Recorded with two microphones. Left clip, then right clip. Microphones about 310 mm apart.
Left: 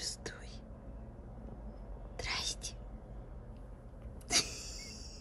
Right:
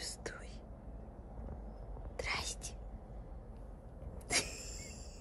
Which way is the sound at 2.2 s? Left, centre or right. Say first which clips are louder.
Left 1 dB; centre.